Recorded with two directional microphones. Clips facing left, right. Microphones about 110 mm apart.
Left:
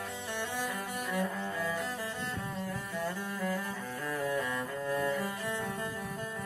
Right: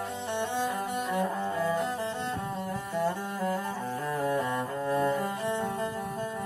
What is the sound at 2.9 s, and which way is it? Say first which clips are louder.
Music: right 8 dB; 25° right (ahead or behind).